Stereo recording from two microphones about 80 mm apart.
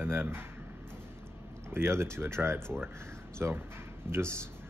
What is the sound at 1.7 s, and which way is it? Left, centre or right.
A man's voice, right.